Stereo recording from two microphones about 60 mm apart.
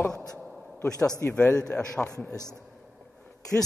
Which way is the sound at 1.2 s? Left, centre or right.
Left.